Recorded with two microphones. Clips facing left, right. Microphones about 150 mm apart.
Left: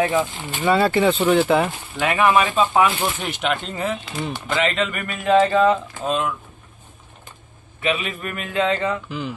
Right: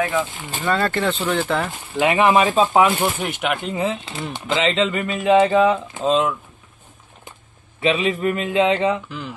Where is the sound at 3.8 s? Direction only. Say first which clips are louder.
Right 1 dB; 20° right (ahead or behind).